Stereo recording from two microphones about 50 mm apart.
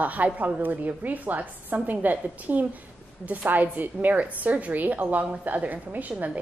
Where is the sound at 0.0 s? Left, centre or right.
Right.